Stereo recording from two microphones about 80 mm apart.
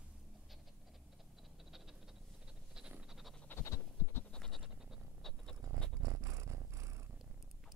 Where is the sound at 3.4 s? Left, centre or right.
Left.